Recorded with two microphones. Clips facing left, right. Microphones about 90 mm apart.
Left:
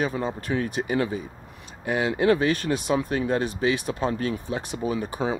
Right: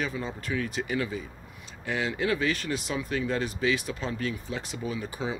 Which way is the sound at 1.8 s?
40° left (ahead or behind).